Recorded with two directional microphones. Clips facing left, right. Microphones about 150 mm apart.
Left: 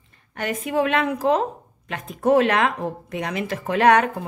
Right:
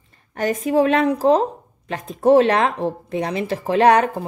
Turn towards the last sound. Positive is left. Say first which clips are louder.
# right 2 dB
turn(degrees=-30)  # may be behind; listen again after turning